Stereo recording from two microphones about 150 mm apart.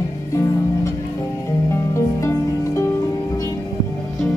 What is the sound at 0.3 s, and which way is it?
Music, 20° left (ahead or behind).